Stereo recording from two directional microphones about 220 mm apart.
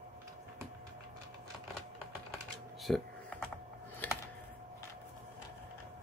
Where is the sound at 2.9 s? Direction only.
Centre (ahead or behind).